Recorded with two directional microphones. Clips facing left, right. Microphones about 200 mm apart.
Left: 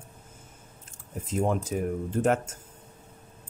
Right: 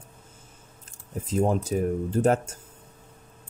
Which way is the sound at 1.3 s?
35° right (ahead or behind).